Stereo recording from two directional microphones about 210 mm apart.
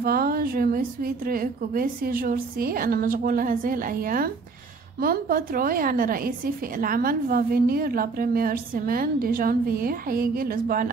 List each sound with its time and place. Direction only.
0.0 s a woman's voice: 45° right (ahead or behind)